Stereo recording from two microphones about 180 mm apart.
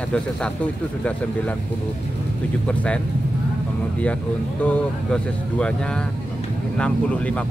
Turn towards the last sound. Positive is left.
turn(degrees=5)  # may be behind; listen again after turning